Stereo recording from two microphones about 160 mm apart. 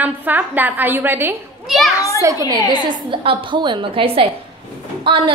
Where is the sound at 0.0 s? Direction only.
10° right (ahead or behind).